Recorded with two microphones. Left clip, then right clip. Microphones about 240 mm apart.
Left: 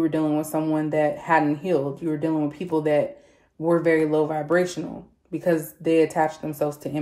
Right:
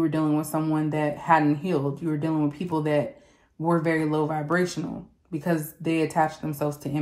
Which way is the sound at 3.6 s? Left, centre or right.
Centre.